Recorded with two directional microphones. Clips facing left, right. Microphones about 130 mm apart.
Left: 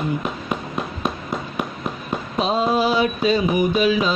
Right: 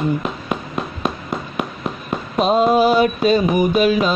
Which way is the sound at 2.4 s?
55° right (ahead or behind).